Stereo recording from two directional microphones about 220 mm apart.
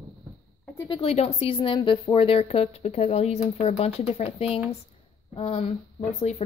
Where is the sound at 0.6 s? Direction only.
15° left (ahead or behind).